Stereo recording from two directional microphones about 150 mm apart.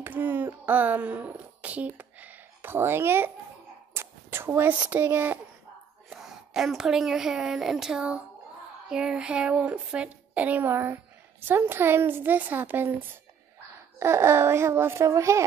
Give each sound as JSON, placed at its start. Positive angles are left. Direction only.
{"t": 0.0, "sound": "speech", "side_deg": -15}
{"t": 6.0, "sound": "a woman's voice", "side_deg": -5}
{"t": 13.9, "sound": "speech", "side_deg": -15}